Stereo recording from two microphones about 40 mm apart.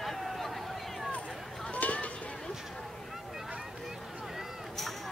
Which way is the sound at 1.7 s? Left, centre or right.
Left.